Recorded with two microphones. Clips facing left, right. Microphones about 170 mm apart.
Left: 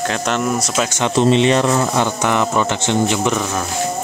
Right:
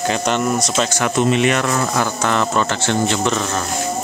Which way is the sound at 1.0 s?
30° left (ahead or behind).